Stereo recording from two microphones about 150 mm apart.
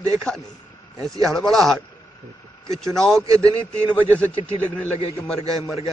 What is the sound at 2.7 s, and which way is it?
Music, 5° left (ahead or behind).